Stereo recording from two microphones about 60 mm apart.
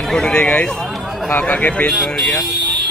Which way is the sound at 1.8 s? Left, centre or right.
Centre.